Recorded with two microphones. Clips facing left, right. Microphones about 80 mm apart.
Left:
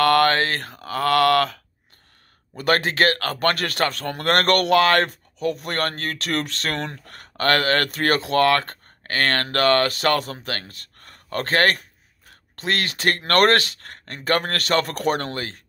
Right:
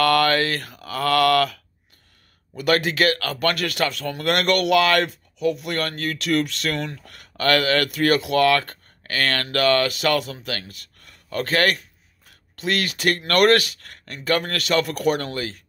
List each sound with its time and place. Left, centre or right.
0.0 s speech: left